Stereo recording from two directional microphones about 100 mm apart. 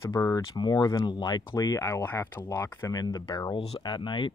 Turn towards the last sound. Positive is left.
turn(degrees=50)  # may be behind; listen again after turning